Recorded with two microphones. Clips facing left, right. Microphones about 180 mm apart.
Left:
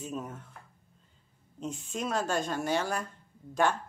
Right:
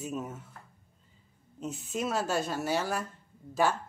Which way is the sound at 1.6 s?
5° right (ahead or behind).